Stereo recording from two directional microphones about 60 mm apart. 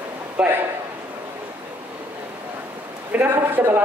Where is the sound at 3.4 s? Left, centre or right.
Right.